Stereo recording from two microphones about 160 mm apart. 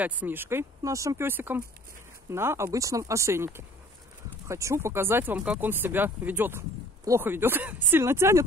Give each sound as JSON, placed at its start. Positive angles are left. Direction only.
{"t": 0.0, "sound": "speech", "side_deg": -10}